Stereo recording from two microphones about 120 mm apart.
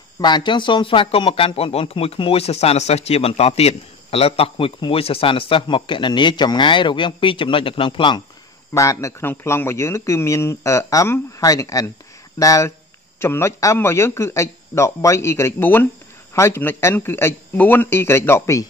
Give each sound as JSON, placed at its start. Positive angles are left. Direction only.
{"t": 0.2, "sound": "speech", "side_deg": 40}
{"t": 8.7, "sound": "a man's voice", "side_deg": 25}